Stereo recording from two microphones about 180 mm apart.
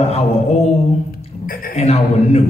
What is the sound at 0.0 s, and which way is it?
Speech, 35° left (ahead or behind).